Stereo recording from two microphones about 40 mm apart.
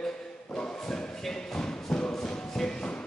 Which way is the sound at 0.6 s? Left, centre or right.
Centre.